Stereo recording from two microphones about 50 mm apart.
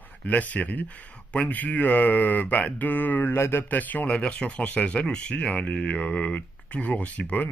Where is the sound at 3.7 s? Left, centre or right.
Left.